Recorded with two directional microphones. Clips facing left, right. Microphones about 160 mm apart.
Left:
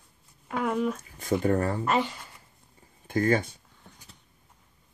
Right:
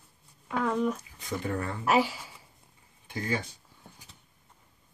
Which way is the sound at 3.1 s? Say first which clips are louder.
Left 8 dB; 50° left (ahead or behind).